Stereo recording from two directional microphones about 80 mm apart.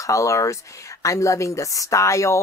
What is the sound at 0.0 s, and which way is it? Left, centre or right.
Speech, left.